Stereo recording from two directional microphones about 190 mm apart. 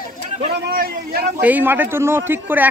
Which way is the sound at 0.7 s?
50° right (ahead or behind).